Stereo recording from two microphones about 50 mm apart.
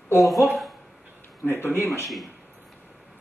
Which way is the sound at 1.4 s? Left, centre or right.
Left.